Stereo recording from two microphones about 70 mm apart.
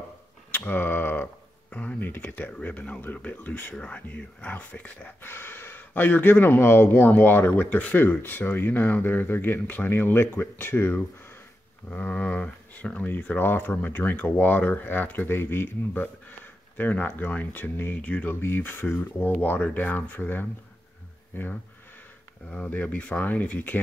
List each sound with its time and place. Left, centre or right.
0.5 s speech: left
22.7 s speech: left